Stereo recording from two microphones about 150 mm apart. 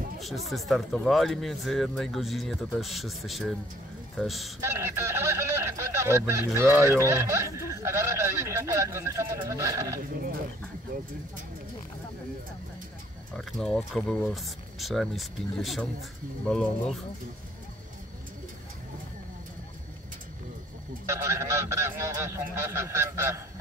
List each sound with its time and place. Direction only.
0.2 s speech: centre (ahead or behind)
4.6 s speech: 15° right (ahead or behind)
13.5 s speech: 5° left (ahead or behind)
21.1 s speech: 20° right (ahead or behind)